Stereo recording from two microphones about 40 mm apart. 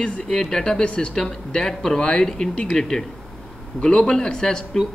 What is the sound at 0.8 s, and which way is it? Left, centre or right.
Speech, left.